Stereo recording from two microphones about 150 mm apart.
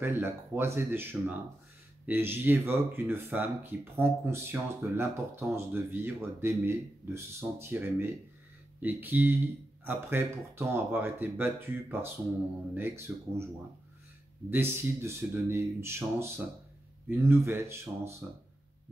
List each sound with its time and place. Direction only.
0.0 s speech: 15° right (ahead or behind)
14.5 s speech: 15° right (ahead or behind)